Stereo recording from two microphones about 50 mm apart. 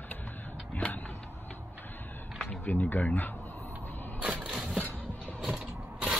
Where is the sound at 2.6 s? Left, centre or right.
Left.